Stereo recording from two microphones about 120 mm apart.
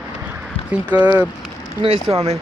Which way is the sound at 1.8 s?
50° right (ahead or behind).